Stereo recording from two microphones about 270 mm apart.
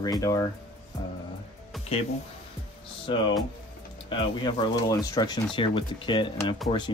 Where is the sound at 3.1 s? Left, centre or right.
Centre.